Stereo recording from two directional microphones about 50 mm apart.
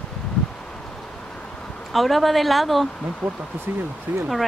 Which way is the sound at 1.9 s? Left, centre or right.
Centre.